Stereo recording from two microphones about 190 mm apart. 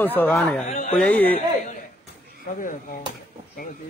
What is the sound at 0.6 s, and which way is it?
Speech, 40° left (ahead or behind).